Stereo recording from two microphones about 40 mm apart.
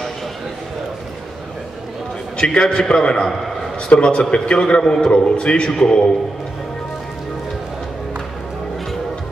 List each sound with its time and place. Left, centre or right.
2.3 s a man's voice: left